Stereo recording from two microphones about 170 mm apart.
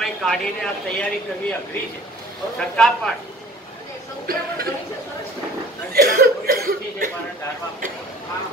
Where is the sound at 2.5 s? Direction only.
5° left (ahead or behind).